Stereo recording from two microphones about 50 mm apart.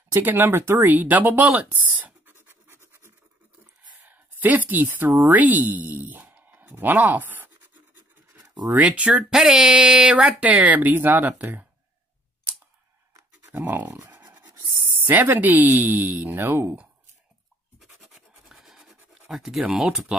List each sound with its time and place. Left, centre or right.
0.2 s speech: right
0.8 s speech: right
2.3 s scratch: right
4.0 s speech: right
6.5 s speech: right
8.7 s speech: right
10.1 s speech: right
13.5 s speech: right
14.8 s speech: right
17.7 s scratch: centre
19.6 s speech: centre